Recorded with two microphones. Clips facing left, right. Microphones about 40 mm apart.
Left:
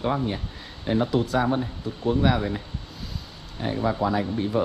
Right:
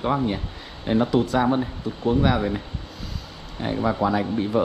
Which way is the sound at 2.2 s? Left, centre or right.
Centre.